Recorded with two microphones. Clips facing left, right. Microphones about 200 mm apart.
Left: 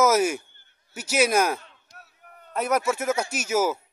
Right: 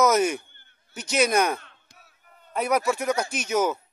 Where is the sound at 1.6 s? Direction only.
60° right (ahead or behind).